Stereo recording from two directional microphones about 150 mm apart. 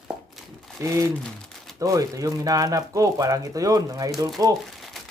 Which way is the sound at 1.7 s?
25° right (ahead or behind).